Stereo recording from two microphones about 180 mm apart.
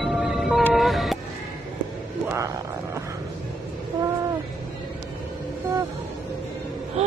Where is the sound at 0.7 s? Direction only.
Centre (ahead or behind).